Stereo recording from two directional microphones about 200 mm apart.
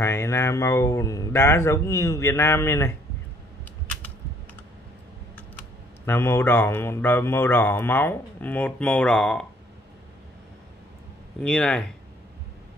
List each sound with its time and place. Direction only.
0.0 s speech: 15° left (ahead or behind)
6.0 s speech: 10° left (ahead or behind)
11.4 s speech: 5° left (ahead or behind)